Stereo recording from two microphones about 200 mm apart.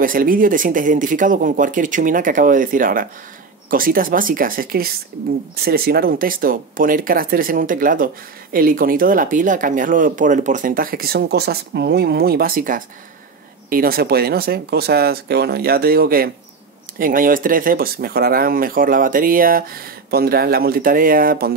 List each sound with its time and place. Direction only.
0.0 s speech: 45° right (ahead or behind)